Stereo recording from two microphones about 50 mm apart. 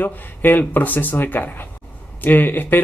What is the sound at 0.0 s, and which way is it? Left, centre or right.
Speech, left.